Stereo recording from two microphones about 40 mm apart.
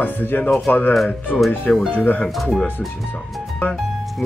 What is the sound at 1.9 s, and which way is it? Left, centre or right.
Speech, left.